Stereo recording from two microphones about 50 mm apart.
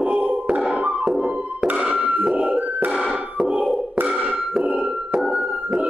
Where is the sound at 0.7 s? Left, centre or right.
Right.